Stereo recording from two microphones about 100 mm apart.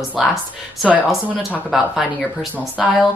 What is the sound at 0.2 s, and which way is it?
A woman's voice, centre (ahead or behind).